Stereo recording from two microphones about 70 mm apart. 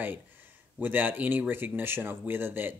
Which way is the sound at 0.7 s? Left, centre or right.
Right.